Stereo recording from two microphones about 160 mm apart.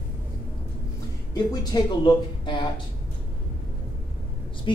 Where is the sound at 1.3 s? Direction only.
25° left (ahead or behind).